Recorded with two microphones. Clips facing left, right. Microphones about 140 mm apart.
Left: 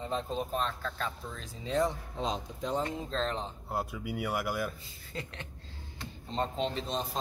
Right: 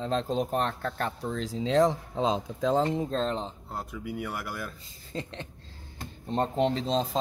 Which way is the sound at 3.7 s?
10° left (ahead or behind).